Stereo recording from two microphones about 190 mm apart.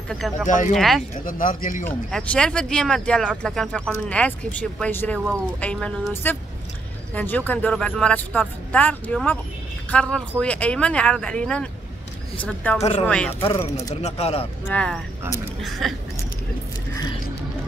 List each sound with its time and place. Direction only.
0.1 s speech: centre (ahead or behind)
0.5 s speech: 40° left (ahead or behind)
0.7 s speech: centre (ahead or behind)
1.2 s a man's voice: 45° left (ahead or behind)
2.0 s a man's voice: 5° left (ahead or behind)
14.0 s speech: 35° left (ahead or behind)
14.7 s speech: 5° left (ahead or behind)